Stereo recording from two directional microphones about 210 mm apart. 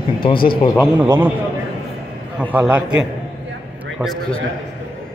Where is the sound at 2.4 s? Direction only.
5° right (ahead or behind).